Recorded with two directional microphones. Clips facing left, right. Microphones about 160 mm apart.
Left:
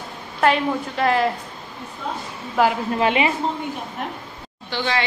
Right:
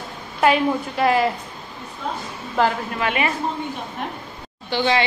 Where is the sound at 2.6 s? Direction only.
5° left (ahead or behind).